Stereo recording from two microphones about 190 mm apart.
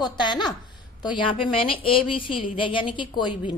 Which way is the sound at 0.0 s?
25° left (ahead or behind).